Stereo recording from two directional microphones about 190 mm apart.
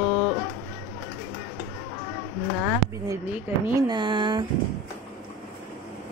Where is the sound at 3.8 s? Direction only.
25° right (ahead or behind).